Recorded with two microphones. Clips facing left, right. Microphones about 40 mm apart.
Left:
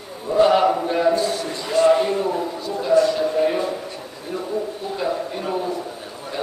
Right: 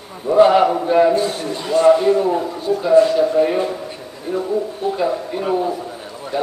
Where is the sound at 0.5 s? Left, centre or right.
Centre.